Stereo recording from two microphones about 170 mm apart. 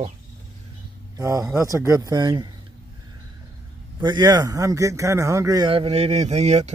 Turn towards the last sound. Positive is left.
turn(degrees=-40)  # may be behind; listen again after turning